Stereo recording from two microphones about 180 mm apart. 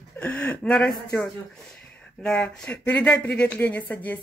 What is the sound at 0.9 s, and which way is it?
Speech, 20° left (ahead or behind).